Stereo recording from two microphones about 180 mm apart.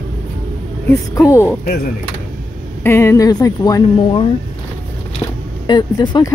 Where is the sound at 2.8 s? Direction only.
15° left (ahead or behind).